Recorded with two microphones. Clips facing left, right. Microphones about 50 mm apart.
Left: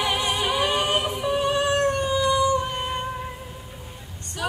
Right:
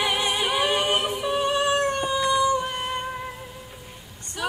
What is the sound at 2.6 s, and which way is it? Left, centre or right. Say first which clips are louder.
Humming: left 1 dB; centre.